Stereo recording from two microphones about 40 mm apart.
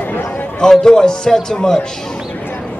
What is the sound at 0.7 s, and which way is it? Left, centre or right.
A man's voice, centre.